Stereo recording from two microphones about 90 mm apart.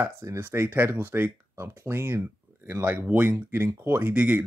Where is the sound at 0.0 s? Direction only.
25° right (ahead or behind).